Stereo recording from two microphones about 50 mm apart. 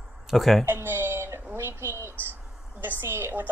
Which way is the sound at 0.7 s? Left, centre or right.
Right.